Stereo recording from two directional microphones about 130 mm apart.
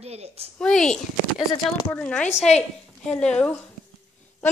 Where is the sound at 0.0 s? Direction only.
55° right (ahead or behind).